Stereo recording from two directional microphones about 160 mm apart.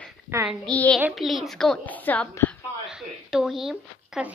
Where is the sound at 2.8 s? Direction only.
5° right (ahead or behind).